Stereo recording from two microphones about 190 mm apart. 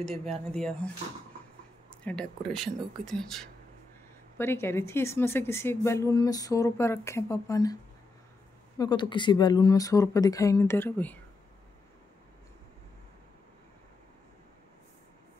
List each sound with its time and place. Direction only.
0.1 s speech: 5° left (ahead or behind)
1.9 s speech: 5° left (ahead or behind)
4.4 s a woman's voice: 10° left (ahead or behind)
8.7 s speech: 25° left (ahead or behind)